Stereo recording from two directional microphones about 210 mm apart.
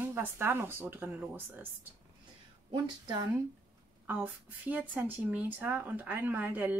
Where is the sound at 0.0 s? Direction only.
10° right (ahead or behind).